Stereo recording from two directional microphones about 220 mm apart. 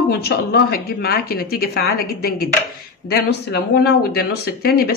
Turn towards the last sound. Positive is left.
turn(degrees=45)  # may be behind; listen again after turning